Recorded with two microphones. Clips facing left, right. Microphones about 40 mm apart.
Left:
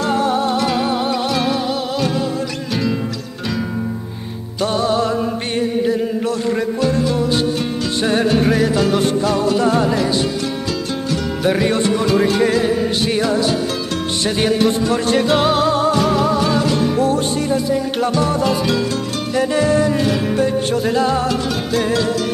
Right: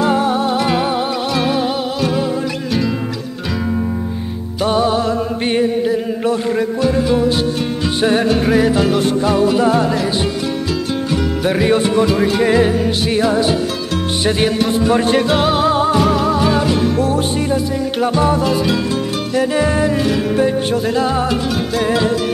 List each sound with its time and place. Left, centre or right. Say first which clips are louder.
0.0 s music: right 2 dB; centre
4.6 s music: right 2 dB; centre
6.5 s music: right 2 dB; centre
9.8 s music: right 1 dB; centre
11.4 s music: right 1 dB; centre
12.4 s music: right 3 dB; right
13.0 s music: right 2 dB; centre
14.9 s music: right 3 dB; centre
15.2 s music: right 1 dB; centre
16.9 s music: even; centre
18.4 s music: right 1 dB; centre